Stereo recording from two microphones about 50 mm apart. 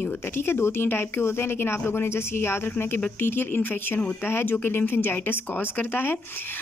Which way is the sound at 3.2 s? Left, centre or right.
Left.